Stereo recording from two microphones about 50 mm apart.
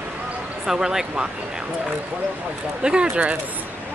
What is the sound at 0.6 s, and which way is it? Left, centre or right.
Speech, centre.